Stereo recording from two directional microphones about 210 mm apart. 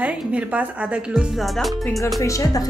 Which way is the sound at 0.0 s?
5° right (ahead or behind).